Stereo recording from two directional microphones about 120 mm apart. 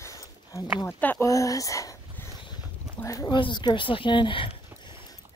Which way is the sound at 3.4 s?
40° left (ahead or behind).